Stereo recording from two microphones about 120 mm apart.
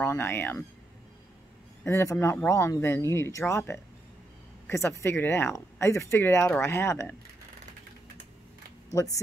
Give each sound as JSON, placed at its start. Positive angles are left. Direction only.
{"t": 0.0, "sound": "speech", "side_deg": 15}
{"t": 1.9, "sound": "speech", "side_deg": 20}
{"t": 8.9, "sound": "speech", "side_deg": 25}